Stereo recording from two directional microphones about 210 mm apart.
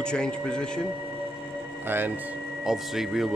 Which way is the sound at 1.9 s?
10° right (ahead or behind).